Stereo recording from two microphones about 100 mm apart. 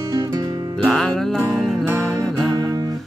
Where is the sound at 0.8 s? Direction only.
5° left (ahead or behind).